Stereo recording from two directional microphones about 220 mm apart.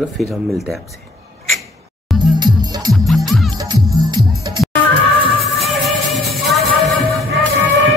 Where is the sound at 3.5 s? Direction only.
20° right (ahead or behind).